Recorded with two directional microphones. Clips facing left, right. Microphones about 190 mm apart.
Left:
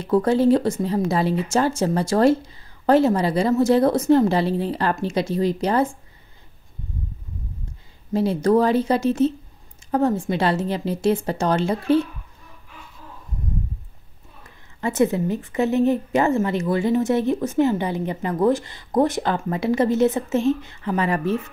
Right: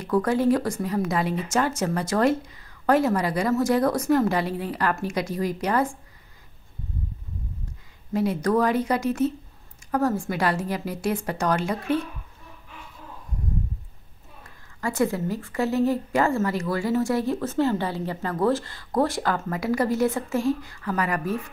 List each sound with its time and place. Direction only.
0.0 s a woman's voice: 25° left (ahead or behind)
8.1 s a woman's voice: 30° left (ahead or behind)
14.8 s a woman's voice: 20° left (ahead or behind)